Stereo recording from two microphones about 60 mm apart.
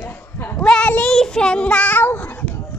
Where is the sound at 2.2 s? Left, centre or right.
Left.